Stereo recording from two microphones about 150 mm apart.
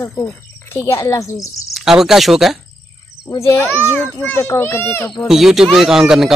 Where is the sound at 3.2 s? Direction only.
20° left (ahead or behind).